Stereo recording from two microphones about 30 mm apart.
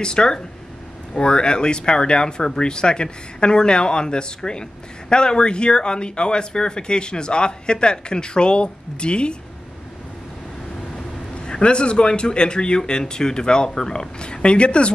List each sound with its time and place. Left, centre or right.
0.0 s speech: left
11.4 s speech: left